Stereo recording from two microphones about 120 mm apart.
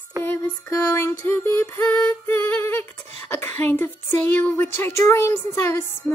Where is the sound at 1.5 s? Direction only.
20° left (ahead or behind).